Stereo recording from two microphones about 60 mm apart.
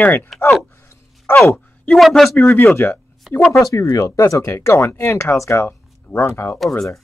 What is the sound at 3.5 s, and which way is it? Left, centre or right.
Speech, left.